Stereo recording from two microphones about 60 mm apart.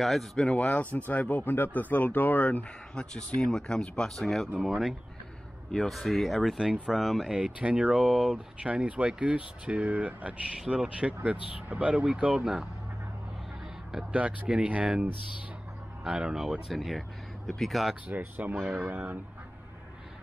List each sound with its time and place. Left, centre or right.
0.0 s speech: centre; by 2.6 s left
2.9 s speech: centre
7.3 s speech: centre
8.6 s speech: right
14.1 s speech: right; by 17.9 s centre
18.0 s speech: right